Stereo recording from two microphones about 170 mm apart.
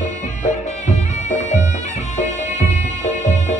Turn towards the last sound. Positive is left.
turn(degrees=45)  # may be behind; listen again after turning